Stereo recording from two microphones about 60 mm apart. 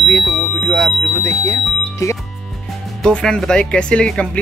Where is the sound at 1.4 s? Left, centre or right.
Left.